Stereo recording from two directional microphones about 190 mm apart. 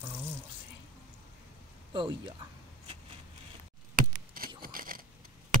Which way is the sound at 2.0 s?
25° right (ahead or behind).